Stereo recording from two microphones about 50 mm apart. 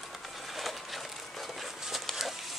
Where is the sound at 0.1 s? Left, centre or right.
Centre.